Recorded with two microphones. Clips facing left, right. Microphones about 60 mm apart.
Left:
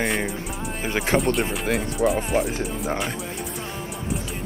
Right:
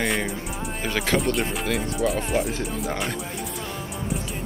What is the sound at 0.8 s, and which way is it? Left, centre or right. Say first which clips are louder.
Speech: left 2 dB; left.